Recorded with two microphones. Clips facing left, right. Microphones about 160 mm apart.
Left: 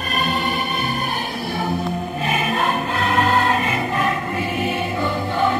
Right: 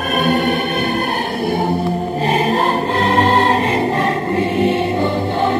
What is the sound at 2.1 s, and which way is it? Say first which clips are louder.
Music: right 6 dB; 35° right (ahead or behind).